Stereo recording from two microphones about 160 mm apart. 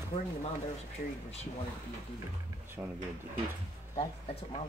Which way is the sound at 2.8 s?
15° right (ahead or behind).